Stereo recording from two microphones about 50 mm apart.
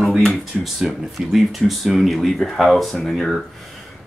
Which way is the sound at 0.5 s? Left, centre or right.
Centre.